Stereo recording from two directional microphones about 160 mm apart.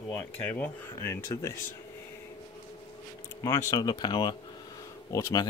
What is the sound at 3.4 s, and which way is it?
Speech, 20° left (ahead or behind).